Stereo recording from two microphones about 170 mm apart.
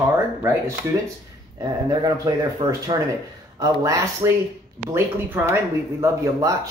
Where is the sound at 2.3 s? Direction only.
20° right (ahead or behind).